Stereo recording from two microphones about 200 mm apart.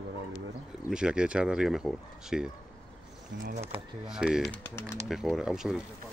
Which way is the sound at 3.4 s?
35° right (ahead or behind).